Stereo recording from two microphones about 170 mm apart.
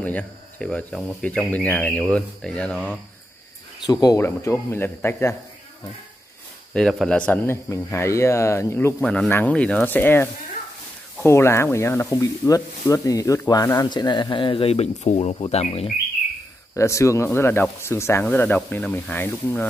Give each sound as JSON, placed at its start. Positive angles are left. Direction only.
{"t": 0.0, "sound": "speech", "side_deg": 10}
{"t": 3.8, "sound": "speech", "side_deg": 25}
{"t": 6.7, "sound": "speech", "side_deg": 0}
{"t": 16.7, "sound": "speech", "side_deg": 15}